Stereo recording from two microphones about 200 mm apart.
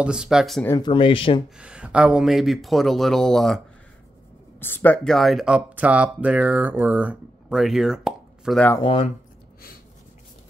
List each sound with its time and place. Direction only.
0.0 s speech: 5° right (ahead or behind)
0.7 s speech: 20° left (ahead or behind)
1.6 s speech: 5° right (ahead or behind)
8.8 s speech: 30° left (ahead or behind)